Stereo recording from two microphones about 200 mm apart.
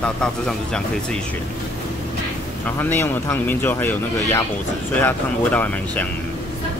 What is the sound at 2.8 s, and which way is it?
Speech, 10° left (ahead or behind).